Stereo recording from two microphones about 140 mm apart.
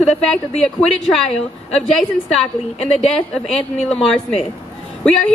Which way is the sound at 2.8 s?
50° left (ahead or behind).